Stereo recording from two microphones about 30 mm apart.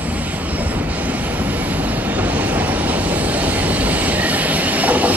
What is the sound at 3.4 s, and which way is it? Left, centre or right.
Train, right.